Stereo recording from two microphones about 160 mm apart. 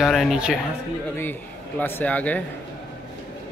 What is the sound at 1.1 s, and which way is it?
Speech, 10° left (ahead or behind).